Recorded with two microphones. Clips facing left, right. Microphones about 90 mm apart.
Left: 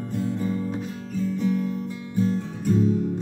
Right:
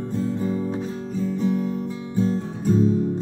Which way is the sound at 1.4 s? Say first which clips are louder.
Right 2 dB; 30° right (ahead or behind).